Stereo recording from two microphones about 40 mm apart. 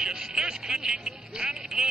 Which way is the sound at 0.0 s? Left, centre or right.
Centre.